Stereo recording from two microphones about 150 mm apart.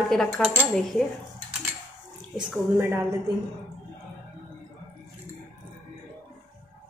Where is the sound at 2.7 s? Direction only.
15° right (ahead or behind).